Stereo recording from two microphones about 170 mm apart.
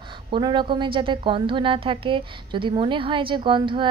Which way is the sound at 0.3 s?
25° right (ahead or behind).